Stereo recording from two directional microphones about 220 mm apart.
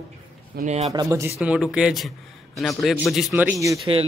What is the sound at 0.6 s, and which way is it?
Speech, 30° right (ahead or behind).